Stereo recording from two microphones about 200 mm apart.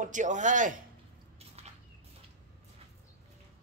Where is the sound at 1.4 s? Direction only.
30° right (ahead or behind).